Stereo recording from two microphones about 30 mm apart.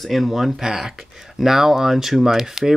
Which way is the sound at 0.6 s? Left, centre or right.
Centre.